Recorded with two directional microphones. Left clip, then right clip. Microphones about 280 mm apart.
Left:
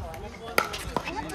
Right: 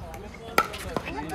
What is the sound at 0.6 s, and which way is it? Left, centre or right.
Chop, centre.